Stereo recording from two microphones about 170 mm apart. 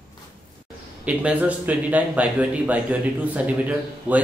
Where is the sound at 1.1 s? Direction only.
10° right (ahead or behind).